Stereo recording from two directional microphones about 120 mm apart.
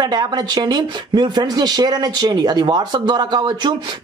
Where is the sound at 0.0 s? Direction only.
35° right (ahead or behind).